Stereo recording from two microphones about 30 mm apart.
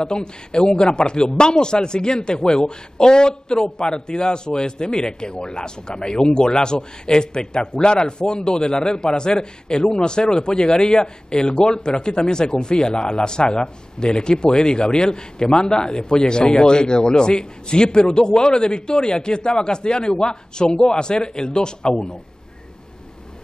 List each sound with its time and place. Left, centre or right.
0.0 s speech: left